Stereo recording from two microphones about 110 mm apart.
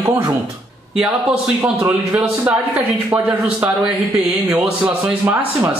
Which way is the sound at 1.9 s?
10° right (ahead or behind).